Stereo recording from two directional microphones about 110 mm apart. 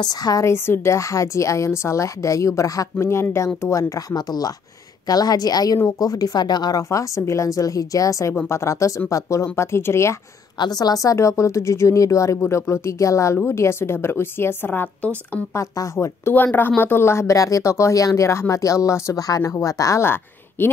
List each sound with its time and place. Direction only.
0.0 s a woman's voice: 35° left (ahead or behind)
0.5 s a woman's voice: 25° left (ahead or behind)
10.6 s a woman's voice: 35° left (ahead or behind); by 15.4 s 15° left (ahead or behind)
15.5 s a woman's voice: 25° left (ahead or behind)